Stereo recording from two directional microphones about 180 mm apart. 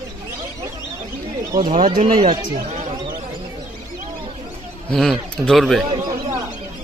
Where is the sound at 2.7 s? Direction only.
40° right (ahead or behind).